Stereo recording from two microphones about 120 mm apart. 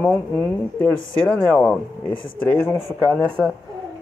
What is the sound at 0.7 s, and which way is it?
Speech, 15° left (ahead or behind).